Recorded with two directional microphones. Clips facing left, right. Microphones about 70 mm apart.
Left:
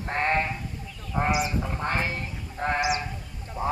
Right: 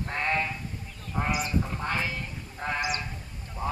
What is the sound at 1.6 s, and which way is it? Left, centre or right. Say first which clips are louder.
Music: left 2 dB; left.